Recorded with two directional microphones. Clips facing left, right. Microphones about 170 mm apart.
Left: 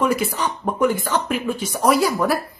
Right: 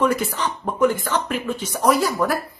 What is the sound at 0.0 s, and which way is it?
Speech, 10° left (ahead or behind).